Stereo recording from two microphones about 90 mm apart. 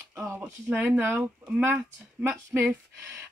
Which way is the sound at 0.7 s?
20° right (ahead or behind).